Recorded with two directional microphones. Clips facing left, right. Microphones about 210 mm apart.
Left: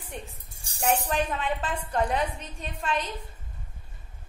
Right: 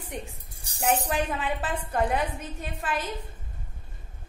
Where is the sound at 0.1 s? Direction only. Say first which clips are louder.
Right 2 dB; 15° right (ahead or behind).